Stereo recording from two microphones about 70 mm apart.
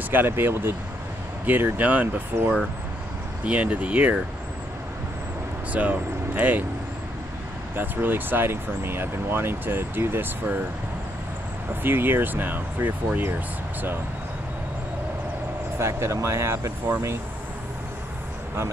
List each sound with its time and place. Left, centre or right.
0.1 s speech: right
5.7 s speech: right
7.7 s speech: right
11.8 s speech: right
15.8 s speech: right